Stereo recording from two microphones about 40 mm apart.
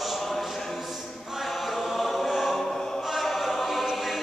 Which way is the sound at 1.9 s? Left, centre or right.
Centre.